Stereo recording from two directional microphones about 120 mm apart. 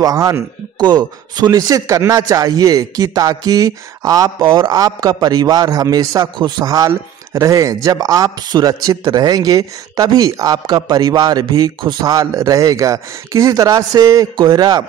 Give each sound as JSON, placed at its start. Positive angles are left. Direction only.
{"t": 0.0, "sound": "speech", "side_deg": -30}